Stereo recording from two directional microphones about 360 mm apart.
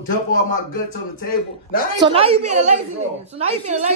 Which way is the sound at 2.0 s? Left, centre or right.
Centre.